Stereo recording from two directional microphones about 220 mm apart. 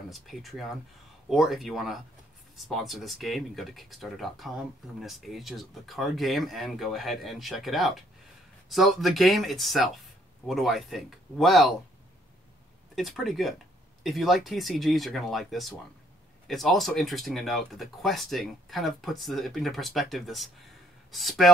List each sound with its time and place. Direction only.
0.1 s speech: centre (ahead or behind)
12.9 s speech: centre (ahead or behind)